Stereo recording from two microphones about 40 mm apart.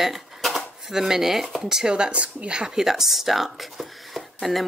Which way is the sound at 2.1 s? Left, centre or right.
Right.